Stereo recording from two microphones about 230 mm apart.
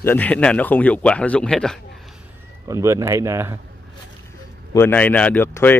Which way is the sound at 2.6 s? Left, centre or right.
Centre.